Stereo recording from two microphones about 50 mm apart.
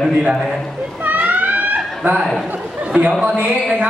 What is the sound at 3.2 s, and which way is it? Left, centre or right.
Speech, right.